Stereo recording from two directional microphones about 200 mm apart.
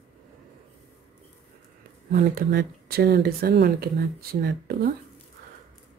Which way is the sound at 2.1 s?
50° right (ahead or behind).